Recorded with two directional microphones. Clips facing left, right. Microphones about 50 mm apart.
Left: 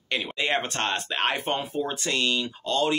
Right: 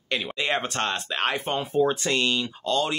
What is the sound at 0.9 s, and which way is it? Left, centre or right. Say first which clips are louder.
Speech: even; centre.